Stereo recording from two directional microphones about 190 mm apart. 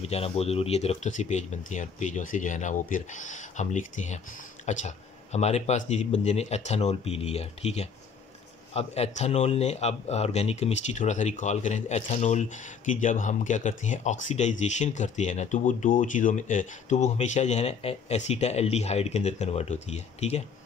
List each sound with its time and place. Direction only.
0.0 s speech: 30° left (ahead or behind)